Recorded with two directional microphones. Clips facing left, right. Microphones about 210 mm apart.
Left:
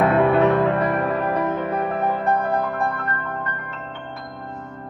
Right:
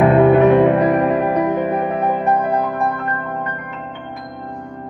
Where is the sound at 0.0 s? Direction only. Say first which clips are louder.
Right 6 dB; 20° right (ahead or behind).